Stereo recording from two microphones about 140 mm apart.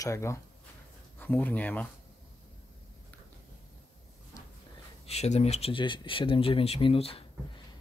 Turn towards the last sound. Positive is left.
turn(degrees=40)  # may be behind; listen again after turning